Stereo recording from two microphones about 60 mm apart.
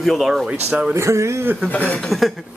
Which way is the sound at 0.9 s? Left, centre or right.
Right.